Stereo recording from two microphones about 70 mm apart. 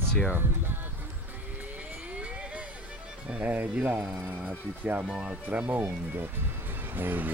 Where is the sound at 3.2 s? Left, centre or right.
Centre.